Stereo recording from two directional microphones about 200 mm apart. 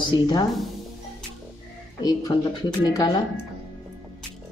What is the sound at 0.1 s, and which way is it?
Speech, 20° left (ahead or behind).